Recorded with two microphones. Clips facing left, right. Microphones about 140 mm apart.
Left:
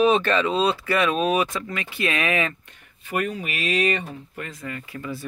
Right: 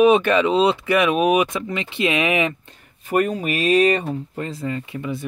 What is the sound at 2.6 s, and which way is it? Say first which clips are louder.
Speech: right 7 dB; 35° right (ahead or behind).